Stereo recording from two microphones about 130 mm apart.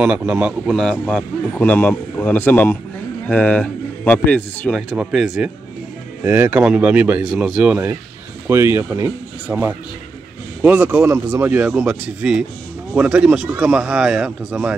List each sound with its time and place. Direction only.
0.0 s speech: 10° right (ahead or behind)
0.7 s a man's voice: 10° left (ahead or behind)
4.7 s speech: centre (ahead or behind)
6.2 s speech: 15° right (ahead or behind)